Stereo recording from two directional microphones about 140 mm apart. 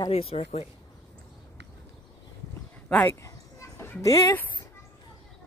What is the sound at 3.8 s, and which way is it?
Speech, 20° left (ahead or behind).